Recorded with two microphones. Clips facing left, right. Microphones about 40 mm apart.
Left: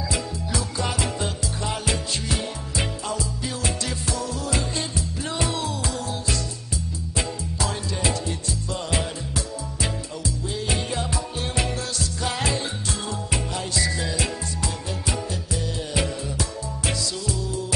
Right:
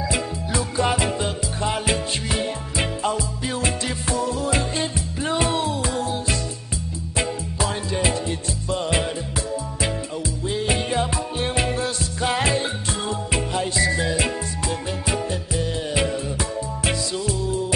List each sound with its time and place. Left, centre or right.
0.1 s music: right
10.5 s music: right